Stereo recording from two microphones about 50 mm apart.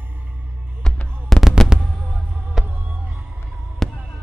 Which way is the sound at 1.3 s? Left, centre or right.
Centre.